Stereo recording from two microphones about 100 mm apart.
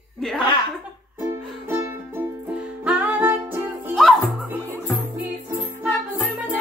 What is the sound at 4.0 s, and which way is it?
Music, centre (ahead or behind).